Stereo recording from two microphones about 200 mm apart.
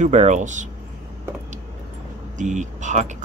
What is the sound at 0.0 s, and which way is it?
Speech, 35° right (ahead or behind).